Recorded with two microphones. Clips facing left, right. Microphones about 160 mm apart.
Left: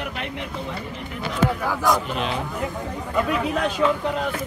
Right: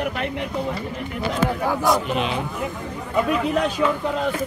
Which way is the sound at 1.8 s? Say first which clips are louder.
Right 1 dB; 10° right (ahead or behind).